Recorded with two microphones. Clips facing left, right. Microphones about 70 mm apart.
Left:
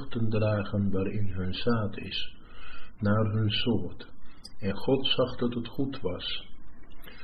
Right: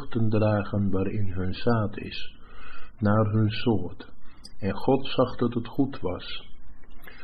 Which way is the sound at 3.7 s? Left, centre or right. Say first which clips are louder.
Right 3 dB; right.